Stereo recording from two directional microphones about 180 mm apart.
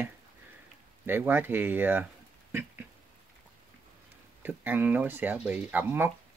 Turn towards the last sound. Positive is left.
turn(degrees=-10)  # may be behind; listen again after turning